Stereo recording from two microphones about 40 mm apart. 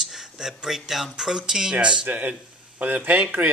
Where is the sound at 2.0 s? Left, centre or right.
Right.